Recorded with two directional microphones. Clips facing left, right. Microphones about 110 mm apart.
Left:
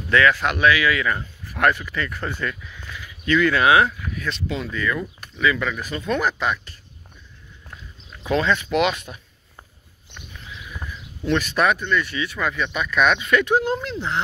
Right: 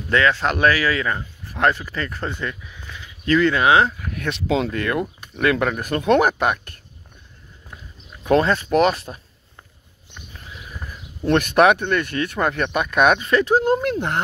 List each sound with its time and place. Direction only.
0.1 s speech: 30° right (ahead or behind)
3.3 s speech: 35° right (ahead or behind)
4.1 s speech: 65° right (ahead or behind)
8.3 s speech: 40° right (ahead or behind)
10.3 s horse: 35° right (ahead or behind)
10.9 s speech: 50° right (ahead or behind)
13.8 s speech: 55° right (ahead or behind)